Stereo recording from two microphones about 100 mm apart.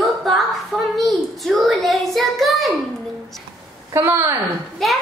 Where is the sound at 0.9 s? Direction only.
Centre (ahead or behind).